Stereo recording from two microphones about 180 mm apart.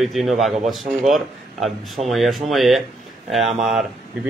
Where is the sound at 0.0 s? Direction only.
Centre (ahead or behind).